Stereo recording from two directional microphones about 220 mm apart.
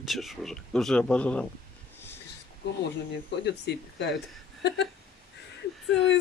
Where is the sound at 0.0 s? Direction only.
Centre (ahead or behind).